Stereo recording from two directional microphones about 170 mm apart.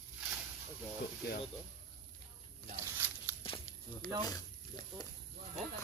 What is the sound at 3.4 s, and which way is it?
Walk, 30° left (ahead or behind).